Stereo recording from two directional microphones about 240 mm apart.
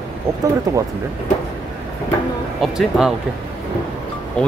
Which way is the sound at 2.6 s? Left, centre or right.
Centre.